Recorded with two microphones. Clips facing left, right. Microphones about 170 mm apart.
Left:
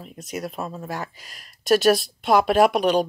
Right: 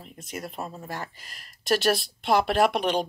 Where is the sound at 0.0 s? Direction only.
55° left (ahead or behind).